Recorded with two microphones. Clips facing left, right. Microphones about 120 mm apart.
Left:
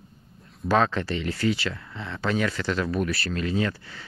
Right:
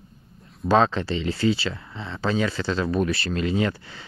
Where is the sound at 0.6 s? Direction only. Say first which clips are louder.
Right 3 dB; 20° right (ahead or behind).